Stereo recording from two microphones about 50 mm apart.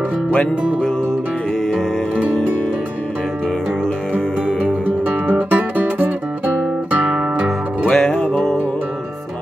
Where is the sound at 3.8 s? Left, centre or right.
Left.